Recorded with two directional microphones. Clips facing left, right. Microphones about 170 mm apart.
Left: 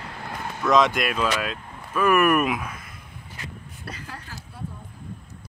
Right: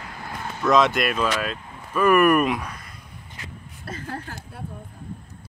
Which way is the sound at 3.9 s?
50° right (ahead or behind).